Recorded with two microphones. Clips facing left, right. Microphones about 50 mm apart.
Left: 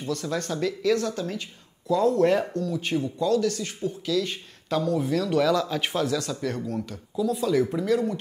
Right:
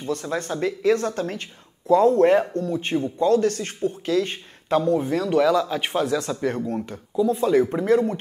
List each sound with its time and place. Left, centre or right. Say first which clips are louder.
0.0 s speech: right 2 dB; right
5.4 s speech: right 3 dB; centre; by 8.2 s right